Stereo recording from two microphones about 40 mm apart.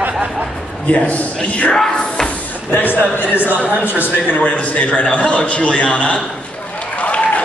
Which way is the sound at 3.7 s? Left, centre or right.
Right.